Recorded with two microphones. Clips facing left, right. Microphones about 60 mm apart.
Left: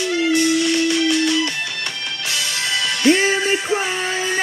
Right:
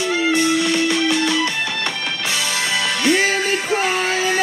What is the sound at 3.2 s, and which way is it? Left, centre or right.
Music, right.